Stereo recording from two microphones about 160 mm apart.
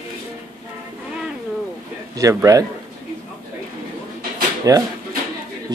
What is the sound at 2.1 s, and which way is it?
Speech, 20° right (ahead or behind).